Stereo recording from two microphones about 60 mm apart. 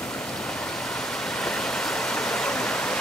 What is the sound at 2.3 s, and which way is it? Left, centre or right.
Waterfall, centre.